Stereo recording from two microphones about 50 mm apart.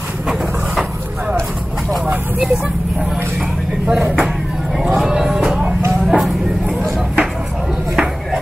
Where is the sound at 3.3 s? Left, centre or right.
Right.